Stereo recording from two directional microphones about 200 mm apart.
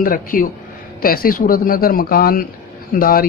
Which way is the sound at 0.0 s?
45° left (ahead or behind).